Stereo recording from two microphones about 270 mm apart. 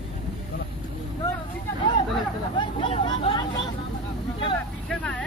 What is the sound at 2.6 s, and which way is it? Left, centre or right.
Speech, centre.